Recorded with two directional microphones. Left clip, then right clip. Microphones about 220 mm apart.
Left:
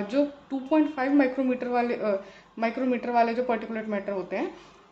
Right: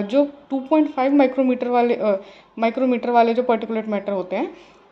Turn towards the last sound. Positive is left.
turn(degrees=-20)  # may be behind; listen again after turning